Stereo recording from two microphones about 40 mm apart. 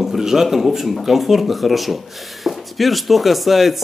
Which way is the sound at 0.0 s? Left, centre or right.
Centre.